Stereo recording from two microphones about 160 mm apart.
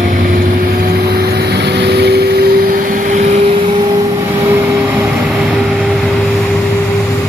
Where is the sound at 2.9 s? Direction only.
50° right (ahead or behind).